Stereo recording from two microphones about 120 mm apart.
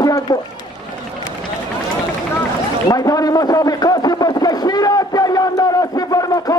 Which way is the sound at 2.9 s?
30° left (ahead or behind).